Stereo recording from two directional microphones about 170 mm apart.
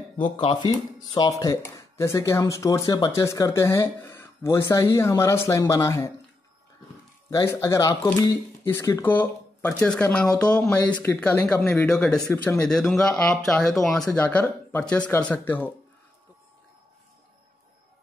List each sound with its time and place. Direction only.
0.4 s speech: 30° left (ahead or behind)
1.4 s speech: 15° left (ahead or behind)
7.2 s speech: 20° left (ahead or behind)